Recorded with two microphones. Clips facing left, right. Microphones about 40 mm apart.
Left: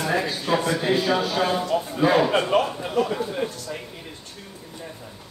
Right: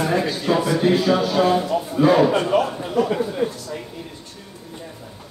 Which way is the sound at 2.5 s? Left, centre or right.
Left.